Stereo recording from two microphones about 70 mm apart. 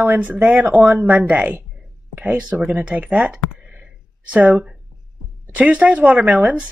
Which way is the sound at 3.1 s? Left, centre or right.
Centre.